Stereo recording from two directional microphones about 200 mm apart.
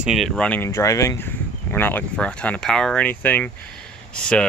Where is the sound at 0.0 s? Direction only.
Centre (ahead or behind).